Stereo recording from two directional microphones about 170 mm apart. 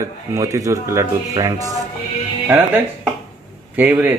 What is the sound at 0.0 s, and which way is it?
Speech, 15° right (ahead or behind).